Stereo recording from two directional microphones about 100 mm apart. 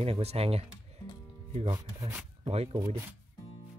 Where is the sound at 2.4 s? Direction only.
75° right (ahead or behind).